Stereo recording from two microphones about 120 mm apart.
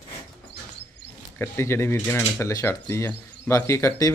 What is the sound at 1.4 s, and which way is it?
Speech, 20° left (ahead or behind).